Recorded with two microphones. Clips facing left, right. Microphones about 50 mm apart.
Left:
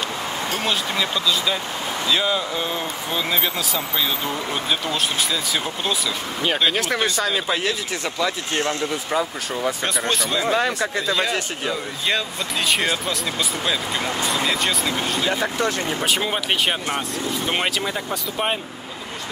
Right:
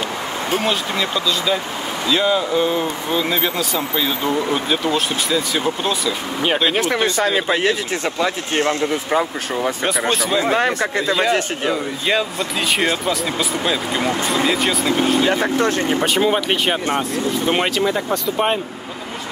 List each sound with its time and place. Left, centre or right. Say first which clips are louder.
0.7 s speech: right 2 dB; centre
7.2 s a man's voice: right 5 dB; right
8.2 s speech: right 3 dB; right
9.8 s speech: right 4 dB; centre
10.5 s speech: right 3 dB; right
12.1 s speech: right 4 dB; centre
15.2 s speech: right 5 dB; right
16.1 s speech: right 5 dB; centre